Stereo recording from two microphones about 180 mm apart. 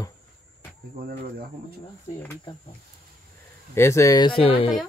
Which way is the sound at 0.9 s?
60° right (ahead or behind).